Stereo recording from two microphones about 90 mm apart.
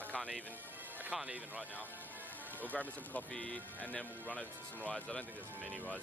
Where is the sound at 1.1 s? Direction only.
5° right (ahead or behind).